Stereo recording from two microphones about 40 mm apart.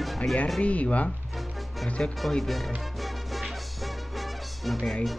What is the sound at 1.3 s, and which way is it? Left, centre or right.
Music, centre.